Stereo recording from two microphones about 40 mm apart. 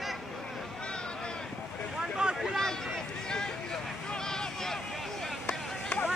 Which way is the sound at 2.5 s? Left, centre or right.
Centre.